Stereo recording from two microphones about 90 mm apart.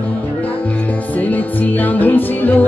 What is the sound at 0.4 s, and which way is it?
Music, 20° left (ahead or behind).